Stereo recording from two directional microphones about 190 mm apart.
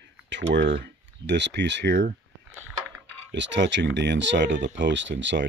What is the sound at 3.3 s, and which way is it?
Speech, 70° right (ahead or behind).